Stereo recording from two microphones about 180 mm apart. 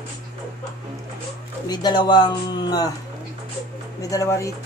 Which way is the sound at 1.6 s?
25° left (ahead or behind).